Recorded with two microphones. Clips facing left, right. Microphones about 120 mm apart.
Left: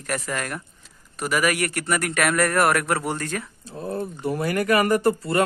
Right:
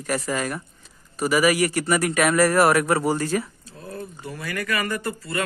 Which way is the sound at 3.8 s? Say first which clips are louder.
Left 7 dB; 35° left (ahead or behind).